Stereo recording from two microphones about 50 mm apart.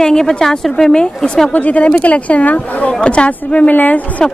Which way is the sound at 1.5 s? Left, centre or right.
Left.